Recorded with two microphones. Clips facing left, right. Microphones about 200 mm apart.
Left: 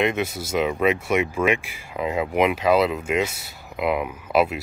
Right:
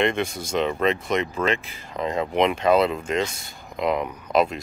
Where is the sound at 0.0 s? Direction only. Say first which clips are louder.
Even; 5° left (ahead or behind).